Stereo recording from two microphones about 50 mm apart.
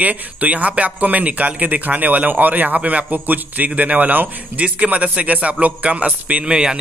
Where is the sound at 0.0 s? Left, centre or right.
Right.